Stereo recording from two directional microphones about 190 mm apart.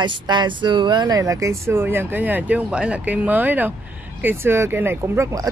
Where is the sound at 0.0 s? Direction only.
25° right (ahead or behind).